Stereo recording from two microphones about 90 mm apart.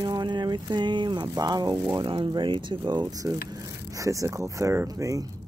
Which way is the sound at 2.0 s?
65° right (ahead or behind).